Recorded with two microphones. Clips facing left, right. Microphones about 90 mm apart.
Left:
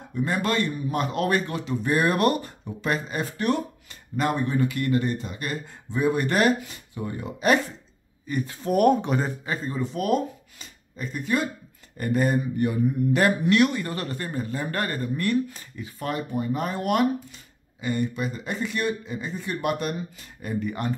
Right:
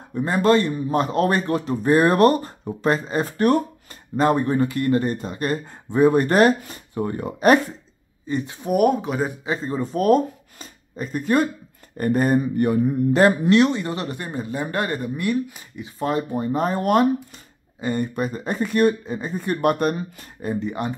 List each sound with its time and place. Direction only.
0.1 s a man's voice: 35° right (ahead or behind)
8.3 s speech: 20° right (ahead or behind)
8.6 s speech: 5° right (ahead or behind)
9.3 s speech: 20° right (ahead or behind)
9.7 s speech: 40° right (ahead or behind)
13.1 s speech: 30° right (ahead or behind); by 20.2 s 50° right (ahead or behind)
20.4 s speech: 25° right (ahead or behind)